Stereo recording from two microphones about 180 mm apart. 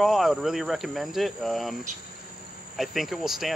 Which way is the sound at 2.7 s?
Centre (ahead or behind).